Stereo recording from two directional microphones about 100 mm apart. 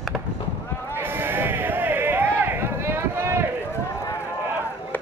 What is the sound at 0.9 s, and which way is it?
Sheep, 20° right (ahead or behind).